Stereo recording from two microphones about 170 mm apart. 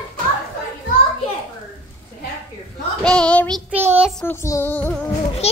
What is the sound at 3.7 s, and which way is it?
Child singing, 10° right (ahead or behind).